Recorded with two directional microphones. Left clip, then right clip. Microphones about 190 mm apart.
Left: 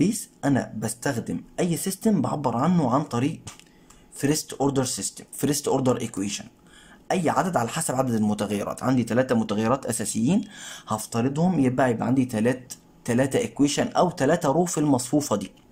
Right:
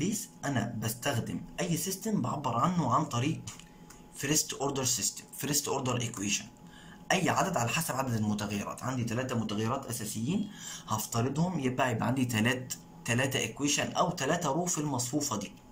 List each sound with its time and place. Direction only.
0.0 s speech: 40° left (ahead or behind)